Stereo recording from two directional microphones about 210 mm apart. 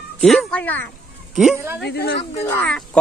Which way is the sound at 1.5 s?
10° right (ahead or behind).